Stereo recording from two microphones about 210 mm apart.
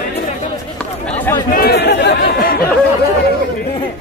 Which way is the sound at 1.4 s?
45° left (ahead or behind).